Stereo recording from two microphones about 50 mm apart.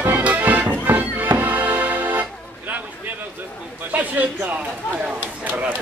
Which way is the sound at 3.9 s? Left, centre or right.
Right.